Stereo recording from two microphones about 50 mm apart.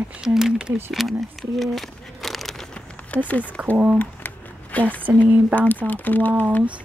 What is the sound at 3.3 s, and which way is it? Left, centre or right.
Speech, left.